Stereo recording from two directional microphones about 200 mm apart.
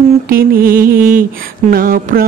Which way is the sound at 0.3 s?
45° right (ahead or behind).